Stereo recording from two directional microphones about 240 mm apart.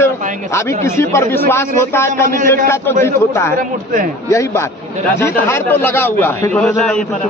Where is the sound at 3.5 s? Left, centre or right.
Right.